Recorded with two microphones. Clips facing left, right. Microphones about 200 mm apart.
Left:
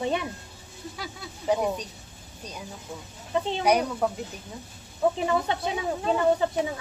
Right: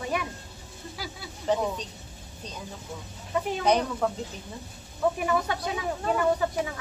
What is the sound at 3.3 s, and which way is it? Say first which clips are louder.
Speech: left 1 dB; 25° left (ahead or behind).